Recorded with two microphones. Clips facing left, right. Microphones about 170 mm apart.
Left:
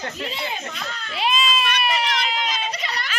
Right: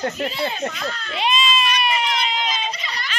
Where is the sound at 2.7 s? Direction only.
65° left (ahead or behind).